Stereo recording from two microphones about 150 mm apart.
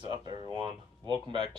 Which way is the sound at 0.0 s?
30° right (ahead or behind).